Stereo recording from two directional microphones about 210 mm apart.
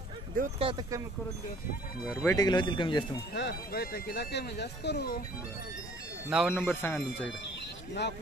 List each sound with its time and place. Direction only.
0.4 s speech: 25° right (ahead or behind)
2.3 s speech: 20° left (ahead or behind)
3.3 s speech: 50° left (ahead or behind)
6.3 s speech: centre (ahead or behind)
6.6 s speech: 10° left (ahead or behind)